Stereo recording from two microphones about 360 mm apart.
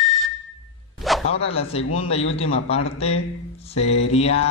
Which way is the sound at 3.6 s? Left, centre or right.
Centre.